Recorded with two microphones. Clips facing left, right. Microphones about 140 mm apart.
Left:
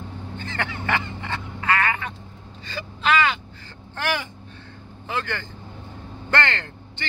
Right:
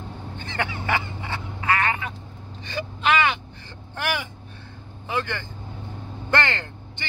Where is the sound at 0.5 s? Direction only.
15° right (ahead or behind).